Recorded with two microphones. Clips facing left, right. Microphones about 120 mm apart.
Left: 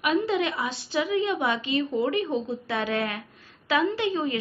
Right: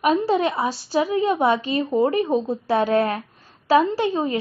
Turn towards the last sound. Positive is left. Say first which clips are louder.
# right 4 dB
turn(degrees=-35)  # may be behind; listen again after turning